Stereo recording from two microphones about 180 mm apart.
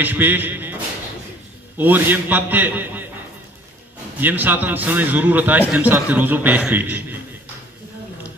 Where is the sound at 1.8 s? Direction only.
10° right (ahead or behind).